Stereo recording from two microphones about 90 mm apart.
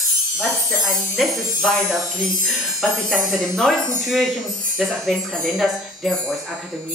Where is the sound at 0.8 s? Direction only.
5° right (ahead or behind).